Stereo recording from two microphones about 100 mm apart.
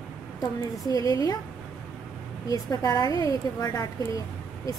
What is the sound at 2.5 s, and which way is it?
A woman's voice, 40° left (ahead or behind).